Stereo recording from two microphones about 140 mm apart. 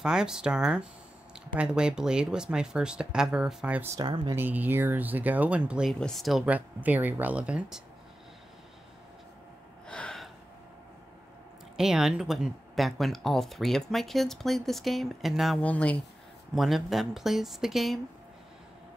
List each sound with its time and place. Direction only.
0.0 s speech: 5° right (ahead or behind)
3.9 s speech: 35° right (ahead or behind)
4.4 s speech: 15° right (ahead or behind)
9.8 s gasp: 5° left (ahead or behind)
11.7 s speech: 5° right (ahead or behind)
15.6 s speech: 10° left (ahead or behind)
16.5 s speech: centre (ahead or behind)